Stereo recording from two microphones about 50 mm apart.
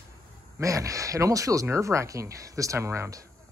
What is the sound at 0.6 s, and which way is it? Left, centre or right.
Speech, right.